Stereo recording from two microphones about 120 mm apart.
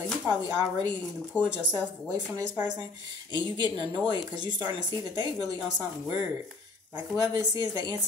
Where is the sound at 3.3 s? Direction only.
40° right (ahead or behind).